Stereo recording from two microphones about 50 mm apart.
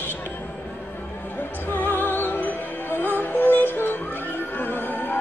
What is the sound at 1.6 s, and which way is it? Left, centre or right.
Music, left.